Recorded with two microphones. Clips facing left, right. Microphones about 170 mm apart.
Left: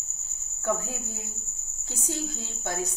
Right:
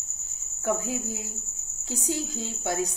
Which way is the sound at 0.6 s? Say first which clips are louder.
Right 2 dB; 15° right (ahead or behind).